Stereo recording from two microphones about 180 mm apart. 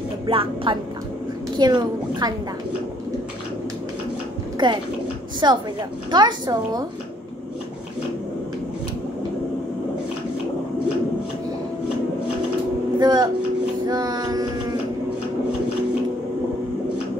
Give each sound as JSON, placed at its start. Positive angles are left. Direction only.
{"t": 0.3, "sound": "a woman's voice", "side_deg": -30}
{"t": 4.6, "sound": "a woman's voice", "side_deg": -25}
{"t": 13.0, "sound": "a woman's voice", "side_deg": -25}
{"t": 13.8, "sound": "child singing", "side_deg": -20}